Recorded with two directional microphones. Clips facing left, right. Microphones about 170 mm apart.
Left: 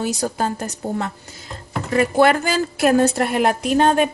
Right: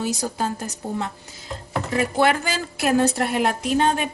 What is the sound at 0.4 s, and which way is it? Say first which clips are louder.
Speech: left 3 dB; 60° left (ahead or behind).